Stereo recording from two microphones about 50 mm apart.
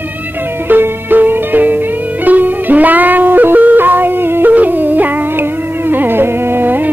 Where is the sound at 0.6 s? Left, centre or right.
Right.